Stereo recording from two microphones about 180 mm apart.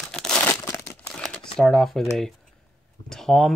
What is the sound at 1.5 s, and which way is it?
Speech, centre (ahead or behind).